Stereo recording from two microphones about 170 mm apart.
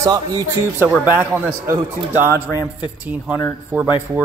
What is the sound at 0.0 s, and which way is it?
Speech, 25° right (ahead or behind).